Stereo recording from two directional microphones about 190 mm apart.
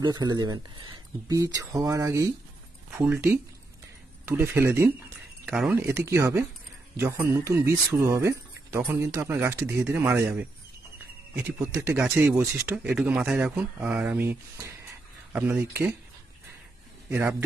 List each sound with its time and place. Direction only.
0.0 s speech: 20° right (ahead or behind)
17.1 s speech: 10° right (ahead or behind)